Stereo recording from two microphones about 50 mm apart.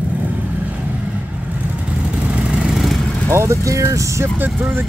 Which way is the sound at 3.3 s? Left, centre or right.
Right.